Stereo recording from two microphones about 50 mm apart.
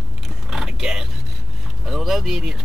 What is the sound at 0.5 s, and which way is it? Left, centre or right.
Vehicle, centre.